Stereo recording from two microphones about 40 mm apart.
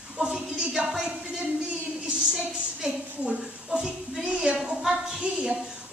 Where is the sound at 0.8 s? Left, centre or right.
Centre.